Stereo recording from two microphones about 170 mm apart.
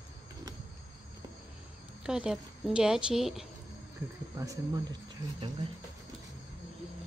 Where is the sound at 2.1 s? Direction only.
5° right (ahead or behind).